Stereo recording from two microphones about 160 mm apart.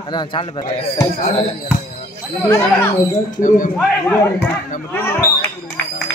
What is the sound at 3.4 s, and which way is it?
Speech, 55° left (ahead or behind).